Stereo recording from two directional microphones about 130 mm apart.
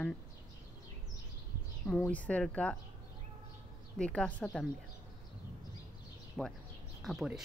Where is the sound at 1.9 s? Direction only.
10° left (ahead or behind).